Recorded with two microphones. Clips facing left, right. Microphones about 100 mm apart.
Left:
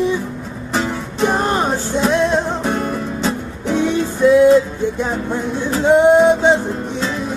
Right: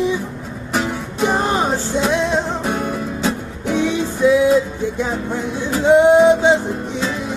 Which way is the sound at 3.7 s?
15° right (ahead or behind).